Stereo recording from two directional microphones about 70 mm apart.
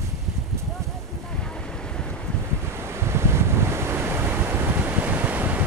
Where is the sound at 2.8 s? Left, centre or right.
Right.